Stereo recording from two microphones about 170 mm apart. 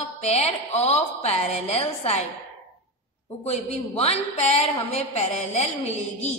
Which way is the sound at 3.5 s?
35° left (ahead or behind).